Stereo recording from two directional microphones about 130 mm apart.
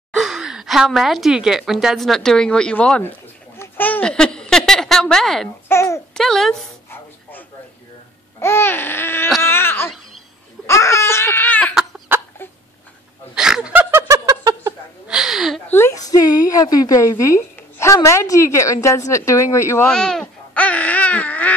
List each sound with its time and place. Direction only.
0.1 s a woman's voice: 5° right (ahead or behind)
5.7 s a woman's voice: 20° left (ahead or behind)
6.1 s speech: 5° left (ahead or behind)
6.9 s a sound: 15° left (ahead or behind)
13.3 s laughter: 5° right (ahead or behind); by 14.7 s 30° right (ahead or behind)
15.0 s a sound: 5° right (ahead or behind)
15.7 s a woman's voice: 20° left (ahead or behind)
19.9 s speech: 5° left (ahead or behind)